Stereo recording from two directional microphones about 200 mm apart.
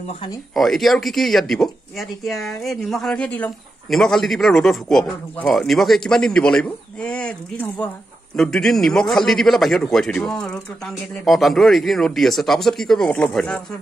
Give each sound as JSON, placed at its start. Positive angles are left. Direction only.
{"t": 0.0, "sound": "speech", "side_deg": 30}
{"t": 0.6, "sound": "speech", "side_deg": 0}